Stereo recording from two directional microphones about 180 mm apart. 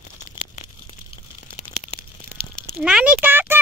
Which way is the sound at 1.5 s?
30° left (ahead or behind).